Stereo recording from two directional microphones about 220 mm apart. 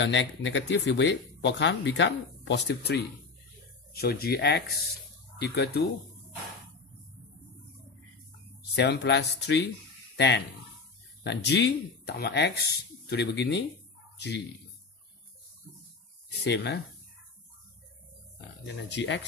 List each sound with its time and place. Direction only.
0.0 s speech: 55° left (ahead or behind)
8.7 s speech: 50° left (ahead or behind)
16.3 s speech: 50° left (ahead or behind)
18.9 s speech: 55° left (ahead or behind)